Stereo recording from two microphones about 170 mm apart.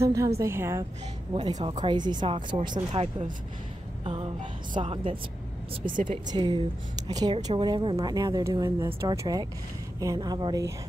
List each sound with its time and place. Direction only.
0.0 s a woman's voice: 20° right (ahead or behind)
1.3 s a woman's voice: 30° right (ahead or behind)
6.3 s a woman's voice: 25° right (ahead or behind)